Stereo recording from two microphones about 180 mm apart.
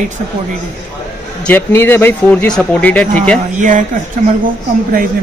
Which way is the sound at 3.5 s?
45° right (ahead or behind).